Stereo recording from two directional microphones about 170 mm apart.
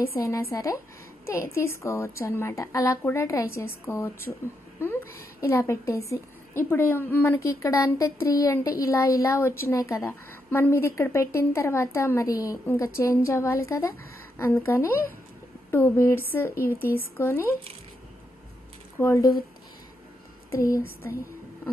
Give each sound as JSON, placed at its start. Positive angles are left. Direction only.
{"t": 0.2, "sound": "a woman's voice", "side_deg": 15}
{"t": 5.4, "sound": "a woman's voice", "side_deg": 15}
{"t": 18.9, "sound": "a woman's voice", "side_deg": 15}
{"t": 20.5, "sound": "a woman's voice", "side_deg": 15}